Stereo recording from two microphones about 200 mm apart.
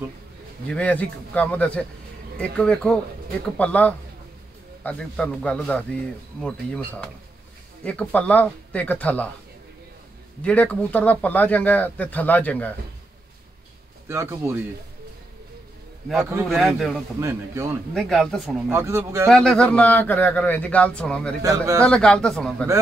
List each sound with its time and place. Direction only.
0.7 s a man's voice: 5° left (ahead or behind)
7.8 s speech: 5° left (ahead or behind)
10.4 s speech: 5° left (ahead or behind)
14.0 s speech: 15° right (ahead or behind)
16.4 s a man's voice: centre (ahead or behind)
17.2 s speech: 15° right (ahead or behind)
17.9 s a man's voice: centre (ahead or behind)
18.7 s speech: 15° right (ahead or behind)
19.2 s speech: 5° left (ahead or behind)
21.4 s speech: 15° right (ahead or behind)
21.8 s a man's voice: 5° left (ahead or behind)